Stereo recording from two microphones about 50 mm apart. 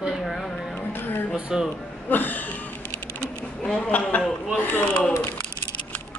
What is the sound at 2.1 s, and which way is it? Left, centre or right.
Speech, left.